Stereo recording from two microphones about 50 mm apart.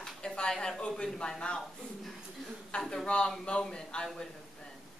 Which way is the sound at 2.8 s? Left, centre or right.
Centre.